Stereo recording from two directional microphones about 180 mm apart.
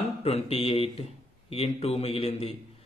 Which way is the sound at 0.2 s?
35° left (ahead or behind).